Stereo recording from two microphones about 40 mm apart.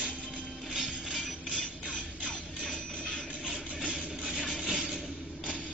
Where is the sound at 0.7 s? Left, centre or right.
Centre.